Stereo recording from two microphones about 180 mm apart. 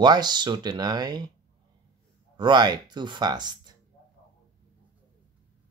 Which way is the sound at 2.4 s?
25° right (ahead or behind).